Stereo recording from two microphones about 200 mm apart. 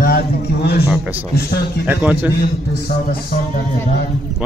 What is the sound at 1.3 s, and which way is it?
Speech, 50° left (ahead or behind).